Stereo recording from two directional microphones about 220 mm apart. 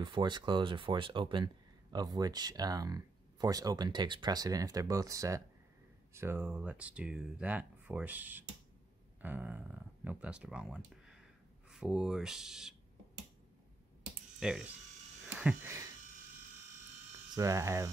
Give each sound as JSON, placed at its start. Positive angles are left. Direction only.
{"t": 0.0, "sound": "speech", "side_deg": -20}
{"t": 14.4, "sound": "speech", "side_deg": -5}
{"t": 17.4, "sound": "speech", "side_deg": -15}